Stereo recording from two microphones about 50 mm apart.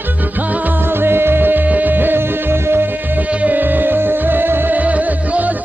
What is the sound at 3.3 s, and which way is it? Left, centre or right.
Music, right.